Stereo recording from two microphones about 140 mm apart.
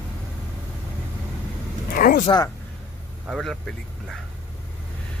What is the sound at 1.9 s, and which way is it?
Vehicle, 80° left.